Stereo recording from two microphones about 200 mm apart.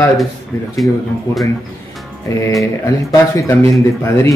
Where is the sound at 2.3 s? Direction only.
15° left (ahead or behind).